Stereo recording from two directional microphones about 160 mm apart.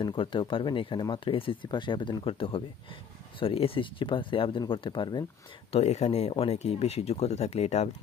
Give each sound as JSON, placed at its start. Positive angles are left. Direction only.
{"t": 0.0, "sound": "speech", "side_deg": 30}
{"t": 5.7, "sound": "speech", "side_deg": 45}